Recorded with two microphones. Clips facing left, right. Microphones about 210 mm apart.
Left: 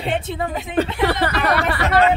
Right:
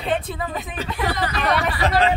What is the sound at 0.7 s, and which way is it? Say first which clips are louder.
Speech: left 9 dB; 65° left (ahead or behind).